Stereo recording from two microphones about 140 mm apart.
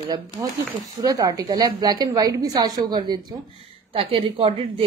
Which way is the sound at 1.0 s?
25° right (ahead or behind).